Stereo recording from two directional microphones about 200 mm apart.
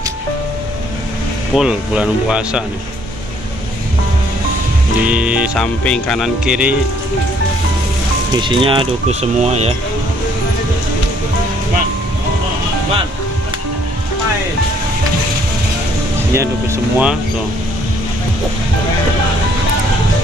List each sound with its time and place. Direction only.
1.5 s speech: 5° right (ahead or behind)
5.0 s speech: 5° right (ahead or behind)
8.4 s speech: 25° right (ahead or behind)
16.3 s speech: 10° right (ahead or behind)